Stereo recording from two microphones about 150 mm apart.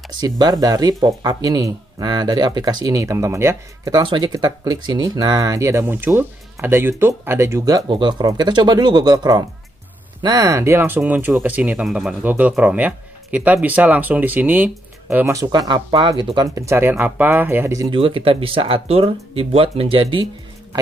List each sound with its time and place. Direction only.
0.2 s speech: 25° right (ahead or behind)
17.9 s speech: 35° right (ahead or behind)